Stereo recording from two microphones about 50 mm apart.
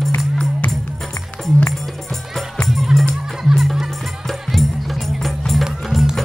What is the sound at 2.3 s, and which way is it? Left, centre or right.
Music, centre.